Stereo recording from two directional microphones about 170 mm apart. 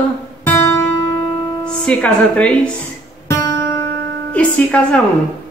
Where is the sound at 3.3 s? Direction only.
15° left (ahead or behind).